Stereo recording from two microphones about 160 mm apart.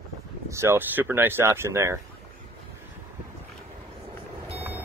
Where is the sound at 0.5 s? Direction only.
15° right (ahead or behind).